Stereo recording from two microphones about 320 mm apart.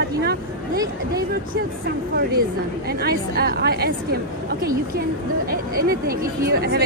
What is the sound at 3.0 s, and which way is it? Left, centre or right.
Speech, right.